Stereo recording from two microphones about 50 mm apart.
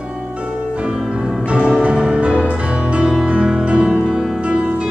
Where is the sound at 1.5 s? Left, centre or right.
Right.